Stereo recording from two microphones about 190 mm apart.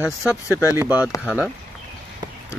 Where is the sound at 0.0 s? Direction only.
5° right (ahead or behind).